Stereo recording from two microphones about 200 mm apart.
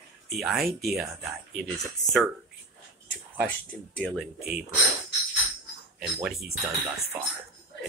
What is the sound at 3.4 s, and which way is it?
Speech, 5° left (ahead or behind).